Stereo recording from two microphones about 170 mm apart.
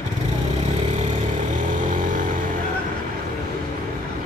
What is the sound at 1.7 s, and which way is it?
Vehicle, 50° right (ahead or behind).